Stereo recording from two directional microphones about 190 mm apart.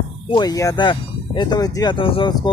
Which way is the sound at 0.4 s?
20° left (ahead or behind).